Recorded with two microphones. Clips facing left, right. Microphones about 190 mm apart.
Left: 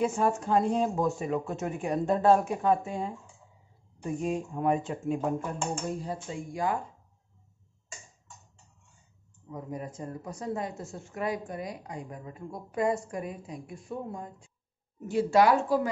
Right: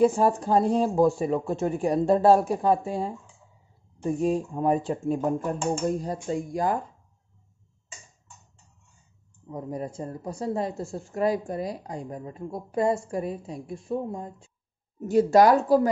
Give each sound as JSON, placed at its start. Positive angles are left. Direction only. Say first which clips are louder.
{"t": 0.0, "sound": "speech", "louder": "right 6 dB", "side_deg": -35}
{"t": 9.5, "sound": "speech", "louder": "right 5 dB", "side_deg": -35}
{"t": 15.0, "sound": "speech", "louder": "right 5 dB", "side_deg": -40}